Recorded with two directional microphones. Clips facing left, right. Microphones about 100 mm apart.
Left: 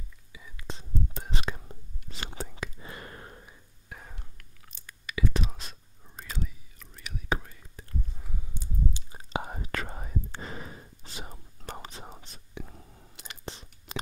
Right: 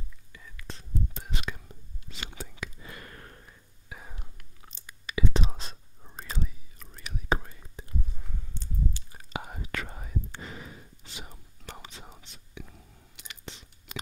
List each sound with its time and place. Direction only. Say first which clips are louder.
0.3 s whispering: left 2 dB; 10° left (ahead or behind)
0.6 s whispering: left 3 dB; 20° left (ahead or behind)
1.1 s whispering: left 2 dB; 35° left (ahead or behind); by 3.5 s 20° left (ahead or behind)
3.9 s whispering: even; 5° right (ahead or behind)
4.2 s whispering: right 2 dB; 20° right (ahead or behind)
7.8 s a sound: right 3 dB; 20° right (ahead or behind)
8.2 s walk: left 1 dB; 5° left (ahead or behind)
9.1 s whispering: left 4 dB; 25° left (ahead or behind)